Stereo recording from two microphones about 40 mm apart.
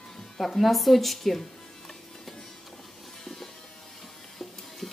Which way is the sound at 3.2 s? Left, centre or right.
Centre.